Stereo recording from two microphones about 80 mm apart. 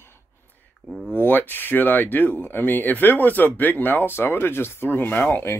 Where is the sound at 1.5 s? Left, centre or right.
Left.